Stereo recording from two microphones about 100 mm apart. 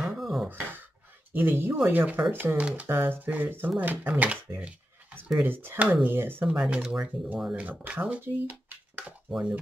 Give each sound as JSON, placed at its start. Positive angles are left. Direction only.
{"t": 0.2, "sound": "a sound", "side_deg": 0}
{"t": 1.3, "sound": "speech", "side_deg": -20}
{"t": 5.4, "sound": "speech", "side_deg": -20}
{"t": 6.6, "sound": "speech", "side_deg": -5}
{"t": 8.3, "sound": "a sound", "side_deg": -20}
{"t": 9.3, "sound": "speech", "side_deg": -10}